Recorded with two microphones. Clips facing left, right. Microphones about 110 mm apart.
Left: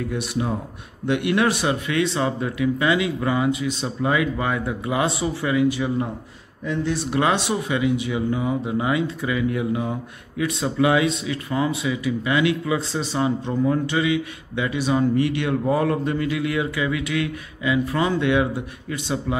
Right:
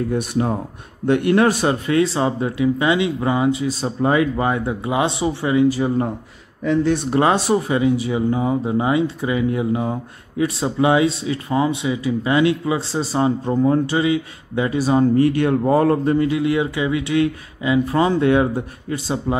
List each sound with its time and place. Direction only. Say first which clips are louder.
0.1 s speech: right 5 dB; 45° right (ahead or behind)
7.1 s speech: right 2 dB; 35° right (ahead or behind)